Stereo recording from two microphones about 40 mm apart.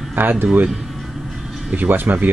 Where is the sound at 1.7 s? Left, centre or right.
Right.